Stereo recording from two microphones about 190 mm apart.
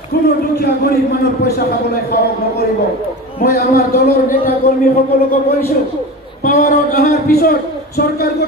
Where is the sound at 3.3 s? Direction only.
50° left (ahead or behind).